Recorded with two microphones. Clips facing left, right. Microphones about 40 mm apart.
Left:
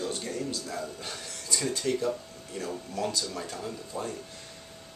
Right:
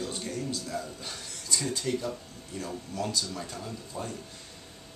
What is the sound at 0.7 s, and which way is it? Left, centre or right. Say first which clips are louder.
Speech: even; centre.